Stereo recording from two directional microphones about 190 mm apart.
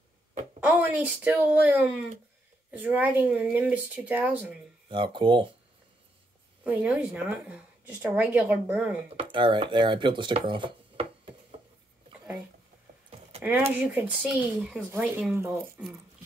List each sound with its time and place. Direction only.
0.6 s a woman's voice: 5° right (ahead or behind)
4.8 s speech: 25° right (ahead or behind)
6.6 s a woman's voice: 5° right (ahead or behind)
9.1 s speech: 25° right (ahead or behind)
13.4 s a woman's voice: 10° right (ahead or behind)